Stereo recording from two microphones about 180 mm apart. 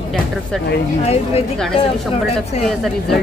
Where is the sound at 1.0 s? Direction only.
35° left (ahead or behind).